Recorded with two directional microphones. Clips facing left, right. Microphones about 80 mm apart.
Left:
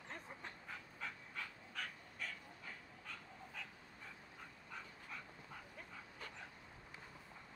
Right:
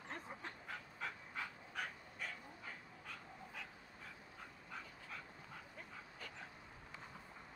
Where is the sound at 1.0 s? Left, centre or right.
Centre.